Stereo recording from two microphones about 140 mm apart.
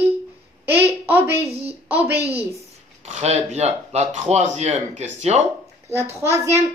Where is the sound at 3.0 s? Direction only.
50° right (ahead or behind).